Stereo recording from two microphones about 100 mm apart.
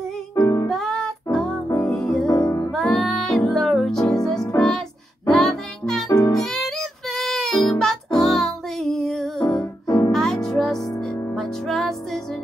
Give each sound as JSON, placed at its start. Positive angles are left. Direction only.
{"t": 0.4, "sound": "music", "side_deg": 35}
{"t": 0.7, "sound": "music", "side_deg": 5}
{"t": 2.2, "sound": "music", "side_deg": 40}
{"t": 2.7, "sound": "music", "side_deg": 0}
{"t": 6.0, "sound": "music", "side_deg": 35}
{"t": 6.3, "sound": "music", "side_deg": 5}
{"t": 9.8, "sound": "music", "side_deg": 40}
{"t": 10.1, "sound": "music", "side_deg": 5}